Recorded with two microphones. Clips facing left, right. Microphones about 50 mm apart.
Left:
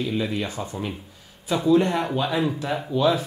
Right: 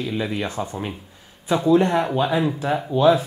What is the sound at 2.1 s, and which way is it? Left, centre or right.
Speech, right.